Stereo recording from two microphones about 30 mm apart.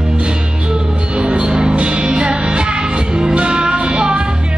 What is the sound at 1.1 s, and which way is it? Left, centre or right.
Music, right.